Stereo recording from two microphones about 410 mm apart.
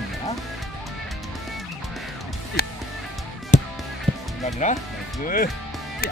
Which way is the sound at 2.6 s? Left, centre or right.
Left.